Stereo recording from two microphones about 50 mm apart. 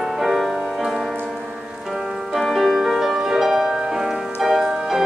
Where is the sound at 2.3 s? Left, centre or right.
Centre.